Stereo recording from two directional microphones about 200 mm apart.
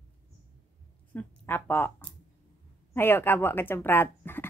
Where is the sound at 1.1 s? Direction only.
10° left (ahead or behind).